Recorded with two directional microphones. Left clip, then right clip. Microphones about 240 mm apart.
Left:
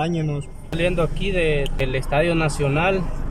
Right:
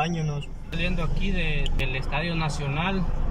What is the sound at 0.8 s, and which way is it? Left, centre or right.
Speech, left.